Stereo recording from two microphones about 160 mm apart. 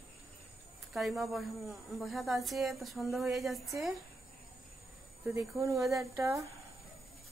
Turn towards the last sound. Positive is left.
turn(degrees=-20)  # may be behind; listen again after turning